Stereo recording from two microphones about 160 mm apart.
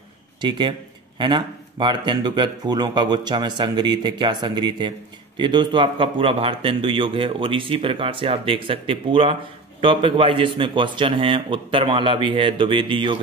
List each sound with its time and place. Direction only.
0.4 s a man's voice: 30° right (ahead or behind)